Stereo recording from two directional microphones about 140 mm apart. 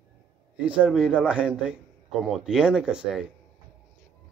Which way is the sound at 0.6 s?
10° right (ahead or behind).